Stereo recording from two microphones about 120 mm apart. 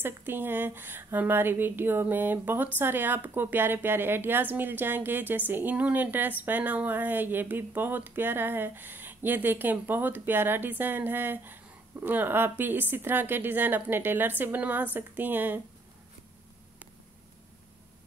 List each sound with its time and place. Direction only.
0.0 s a woman's voice: 15° right (ahead or behind)